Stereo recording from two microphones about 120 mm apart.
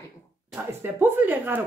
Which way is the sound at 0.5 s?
15° right (ahead or behind).